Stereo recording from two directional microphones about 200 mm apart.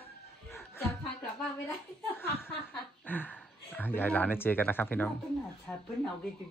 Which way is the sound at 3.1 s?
10° left (ahead or behind).